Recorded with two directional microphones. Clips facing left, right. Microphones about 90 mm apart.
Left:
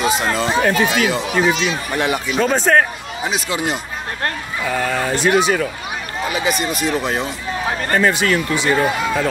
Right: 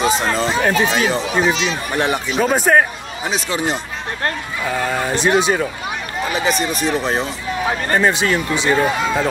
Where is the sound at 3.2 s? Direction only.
35° right (ahead or behind).